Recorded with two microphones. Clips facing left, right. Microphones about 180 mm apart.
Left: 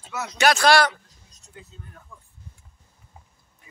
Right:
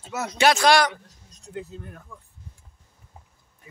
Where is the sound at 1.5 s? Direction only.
65° right (ahead or behind).